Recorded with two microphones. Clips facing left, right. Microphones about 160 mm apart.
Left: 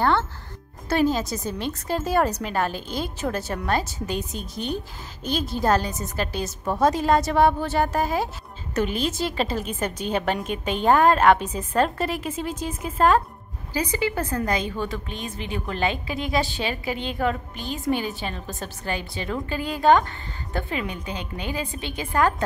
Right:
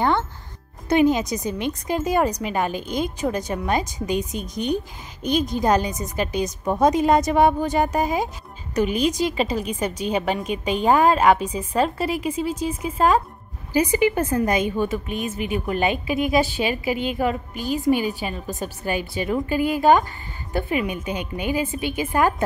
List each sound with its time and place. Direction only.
0.8 s a woman's voice: 15° right (ahead or behind)
4.4 s a woman's voice: 45° right (ahead or behind)
5.2 s a woman's voice: 5° left (ahead or behind)
5.6 s a woman's voice: 15° right (ahead or behind)